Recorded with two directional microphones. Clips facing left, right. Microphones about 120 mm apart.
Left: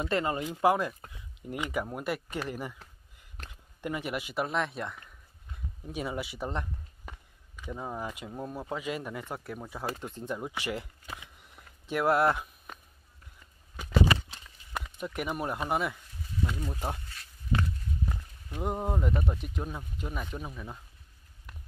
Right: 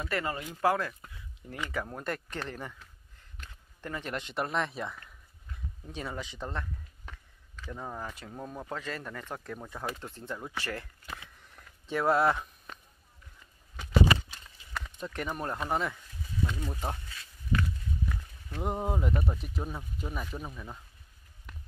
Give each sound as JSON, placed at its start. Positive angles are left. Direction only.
{"t": 0.0, "sound": "speech", "side_deg": 25}
{"t": 3.8, "sound": "speech", "side_deg": 10}
{"t": 5.9, "sound": "speech", "side_deg": 10}
{"t": 11.9, "sound": "speech", "side_deg": 0}
{"t": 15.0, "sound": "speech", "side_deg": 10}
{"t": 17.5, "sound": "walk", "side_deg": 25}
{"t": 18.6, "sound": "speech", "side_deg": 0}
{"t": 21.5, "sound": "music", "side_deg": 5}